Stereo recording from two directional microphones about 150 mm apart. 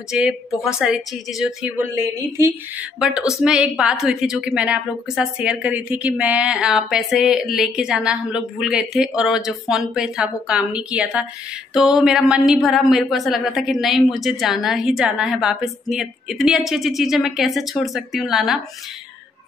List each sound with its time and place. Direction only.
0.1 s a woman's voice: 5° right (ahead or behind)
1.8 s speech: 15° right (ahead or behind)
3.3 s a woman's voice: 5° right (ahead or behind)